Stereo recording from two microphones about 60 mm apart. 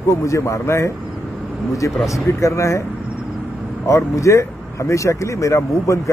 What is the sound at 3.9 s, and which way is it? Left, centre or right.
Speech, left.